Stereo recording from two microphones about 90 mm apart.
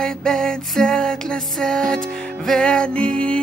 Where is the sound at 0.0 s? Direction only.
5° left (ahead or behind).